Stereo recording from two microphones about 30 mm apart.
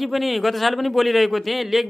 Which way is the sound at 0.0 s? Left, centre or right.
Centre.